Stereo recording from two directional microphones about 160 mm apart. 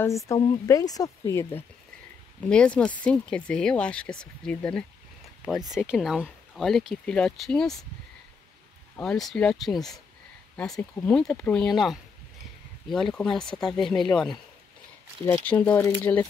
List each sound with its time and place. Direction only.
0.3 s speech: 20° left (ahead or behind); by 4.8 s 5° left (ahead or behind)
5.9 s speech: 5° right (ahead or behind)
8.9 s speech: 5° left (ahead or behind)
13.1 s speech: 5° left (ahead or behind)